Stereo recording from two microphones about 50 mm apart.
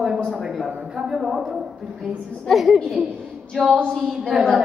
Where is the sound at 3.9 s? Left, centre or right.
Centre.